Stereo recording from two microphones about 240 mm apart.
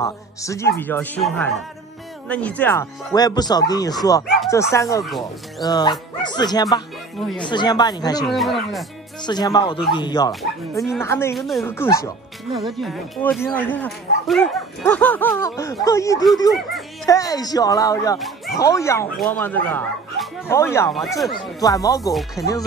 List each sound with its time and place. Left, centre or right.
0.0 s speech: centre
8.3 s speech: centre
9.2 s speech: centre
11.3 s speech: centre
12.5 s speech: centre